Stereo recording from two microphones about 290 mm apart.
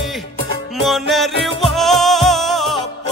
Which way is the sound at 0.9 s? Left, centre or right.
Centre.